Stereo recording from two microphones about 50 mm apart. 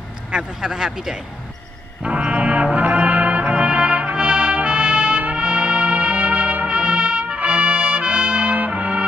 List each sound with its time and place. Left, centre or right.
0.3 s speech: centre
2.0 s brass instrument: right
5.2 s trumpet: right